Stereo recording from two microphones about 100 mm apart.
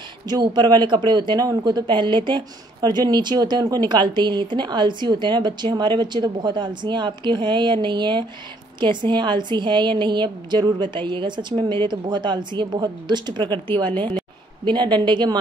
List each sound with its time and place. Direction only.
0.3 s speech: 45° right (ahead or behind)
14.6 s speech: 50° right (ahead or behind)